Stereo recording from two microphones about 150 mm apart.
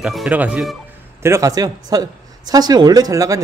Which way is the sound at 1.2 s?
20° right (ahead or behind).